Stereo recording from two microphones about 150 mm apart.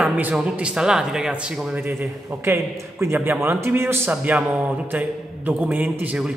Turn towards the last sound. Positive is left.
turn(degrees=-5)  # may be behind; listen again after turning